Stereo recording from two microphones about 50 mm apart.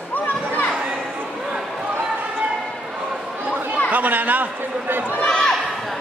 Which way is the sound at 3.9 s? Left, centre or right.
Right.